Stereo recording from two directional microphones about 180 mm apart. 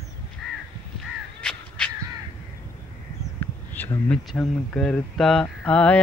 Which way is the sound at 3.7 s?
10° left (ahead or behind).